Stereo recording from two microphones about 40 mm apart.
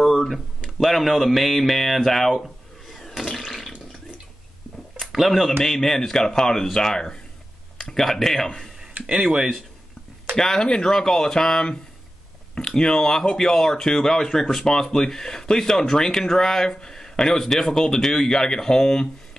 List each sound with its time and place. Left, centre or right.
0.0 s a sound: centre
0.3 s speech: centre
3.1 s water: centre
5.1 s speech: centre
5.6 s speech: centre
9.0 s speech: centre
10.3 s speech: centre